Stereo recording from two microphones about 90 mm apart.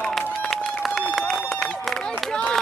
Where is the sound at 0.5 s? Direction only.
5° left (ahead or behind).